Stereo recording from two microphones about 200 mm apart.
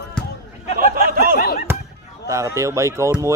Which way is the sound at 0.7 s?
45° right (ahead or behind).